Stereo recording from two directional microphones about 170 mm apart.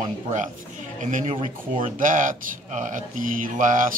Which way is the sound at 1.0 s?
45° right (ahead or behind).